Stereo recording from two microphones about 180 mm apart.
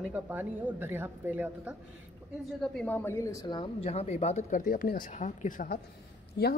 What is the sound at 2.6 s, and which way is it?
Speech, 5° left (ahead or behind).